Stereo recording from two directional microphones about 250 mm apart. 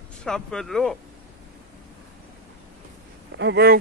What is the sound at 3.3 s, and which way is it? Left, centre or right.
Speech, right.